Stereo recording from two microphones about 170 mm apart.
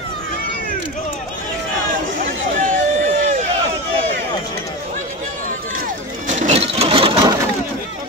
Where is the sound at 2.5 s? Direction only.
50° right (ahead or behind).